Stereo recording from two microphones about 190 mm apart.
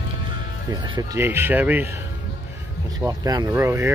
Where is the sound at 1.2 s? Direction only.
10° right (ahead or behind).